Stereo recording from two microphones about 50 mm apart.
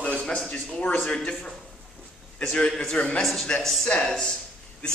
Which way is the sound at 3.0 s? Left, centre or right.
Left.